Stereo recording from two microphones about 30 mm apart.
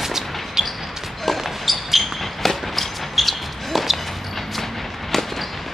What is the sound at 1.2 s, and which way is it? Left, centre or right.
Basketball bounce, centre.